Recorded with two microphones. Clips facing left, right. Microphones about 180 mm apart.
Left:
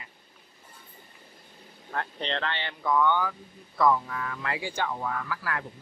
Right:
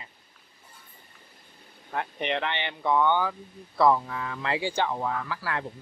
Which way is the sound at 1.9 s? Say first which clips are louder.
Right 3 dB; 15° right (ahead or behind).